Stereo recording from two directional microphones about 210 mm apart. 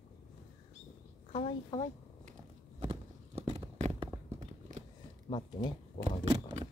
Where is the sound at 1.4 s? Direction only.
20° left (ahead or behind).